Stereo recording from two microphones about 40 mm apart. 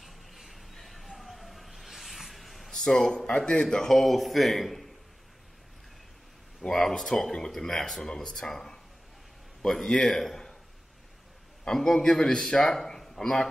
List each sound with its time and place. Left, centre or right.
0.0 s music: centre
1.1 s a sound: centre
2.7 s a man's voice: centre
3.3 s a man's voice: left
3.9 s a man's voice: centre
6.6 s a man's voice: centre
11.6 s a man's voice: centre